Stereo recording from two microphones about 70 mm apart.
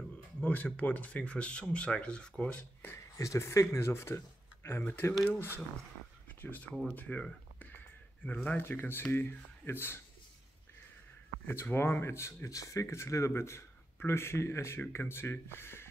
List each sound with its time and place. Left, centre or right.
0.4 s speech: left
3.2 s speech: left
6.4 s speech: left
7.0 s a sound: left
8.3 s speech: left
11.4 s speech: left